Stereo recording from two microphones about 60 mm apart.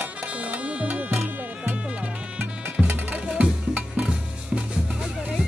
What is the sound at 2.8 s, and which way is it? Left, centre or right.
Music, right.